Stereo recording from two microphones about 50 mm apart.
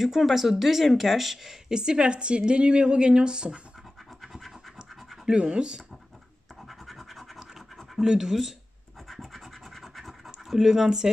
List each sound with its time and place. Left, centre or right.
0.0 s speech: centre
4.2 s scratch: centre
5.2 s speech: centre
6.7 s scratch: centre
8.1 s speech: centre
9.0 s scratch: centre